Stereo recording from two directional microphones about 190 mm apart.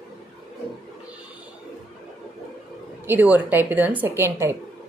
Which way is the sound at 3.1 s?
10° right (ahead or behind).